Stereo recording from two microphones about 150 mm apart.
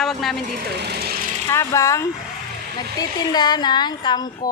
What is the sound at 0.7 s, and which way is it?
Sewing machine, 90° right.